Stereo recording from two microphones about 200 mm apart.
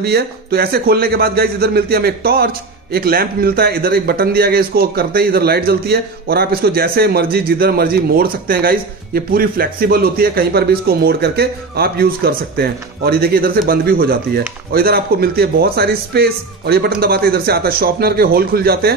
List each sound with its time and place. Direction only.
0.0 s speech: 50° right (ahead or behind)